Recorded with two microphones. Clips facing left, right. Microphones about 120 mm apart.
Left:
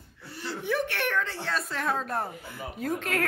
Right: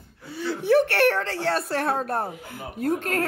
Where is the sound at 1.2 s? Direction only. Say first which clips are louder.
Right 7 dB; 85° right; by 1.9 s 65° right (ahead or behind).